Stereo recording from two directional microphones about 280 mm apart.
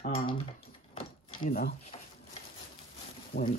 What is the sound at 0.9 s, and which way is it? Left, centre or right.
Drawer open or close, left.